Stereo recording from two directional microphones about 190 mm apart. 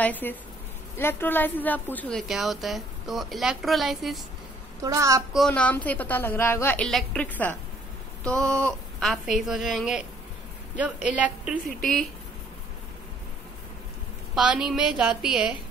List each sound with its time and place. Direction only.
0.0 s a woman's voice: 10° left (ahead or behind)
4.8 s a woman's voice: 15° right (ahead or behind)
5.3 s a woman's voice: 5° left (ahead or behind)
8.2 s a sound: 5° left (ahead or behind)
8.6 s a woman's voice: centre (ahead or behind)
14.3 s a woman's voice: 5° right (ahead or behind)